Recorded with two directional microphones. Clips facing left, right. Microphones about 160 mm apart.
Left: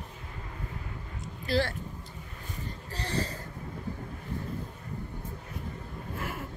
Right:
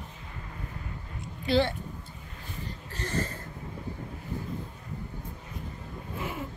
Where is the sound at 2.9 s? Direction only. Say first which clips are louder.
Right 1 dB; 35° left (ahead or behind).